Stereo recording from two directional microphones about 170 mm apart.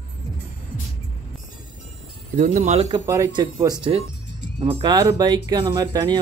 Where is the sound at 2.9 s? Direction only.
20° right (ahead or behind).